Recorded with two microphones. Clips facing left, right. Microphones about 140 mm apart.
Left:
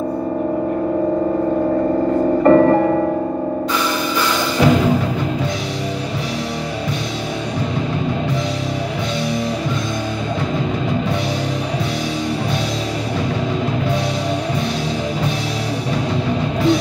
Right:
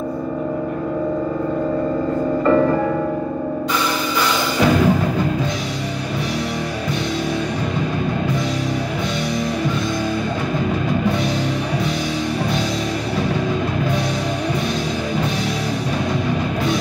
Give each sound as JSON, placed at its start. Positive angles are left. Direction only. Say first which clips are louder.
{"t": 2.4, "sound": "music", "louder": "left 5 dB", "side_deg": 55}
{"t": 4.6, "sound": "music", "louder": "left 1 dB", "side_deg": 20}